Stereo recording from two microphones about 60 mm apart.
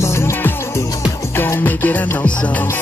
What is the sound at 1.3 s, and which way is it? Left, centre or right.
Music, left.